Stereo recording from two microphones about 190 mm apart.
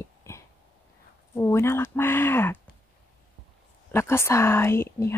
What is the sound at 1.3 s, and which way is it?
Speech, 15° left (ahead or behind).